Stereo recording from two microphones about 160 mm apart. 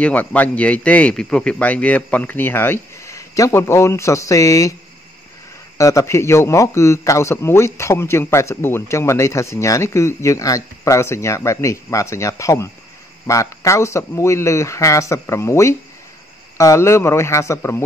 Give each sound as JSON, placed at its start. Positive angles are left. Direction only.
{"t": 0.0, "sound": "a man's voice", "side_deg": 10}
{"t": 5.8, "sound": "a man's voice", "side_deg": 20}